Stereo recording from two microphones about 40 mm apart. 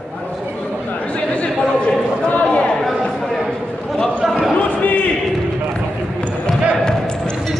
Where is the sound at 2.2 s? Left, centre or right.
Left.